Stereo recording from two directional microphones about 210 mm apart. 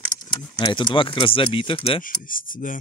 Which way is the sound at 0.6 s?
20° left (ahead or behind).